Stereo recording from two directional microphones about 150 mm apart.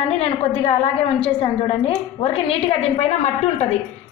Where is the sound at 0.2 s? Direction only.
40° left (ahead or behind).